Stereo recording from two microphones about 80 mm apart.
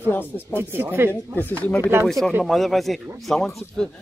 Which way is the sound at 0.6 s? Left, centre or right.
Right.